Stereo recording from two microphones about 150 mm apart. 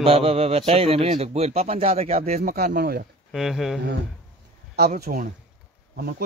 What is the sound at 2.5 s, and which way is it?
Speech, 75° right (ahead or behind).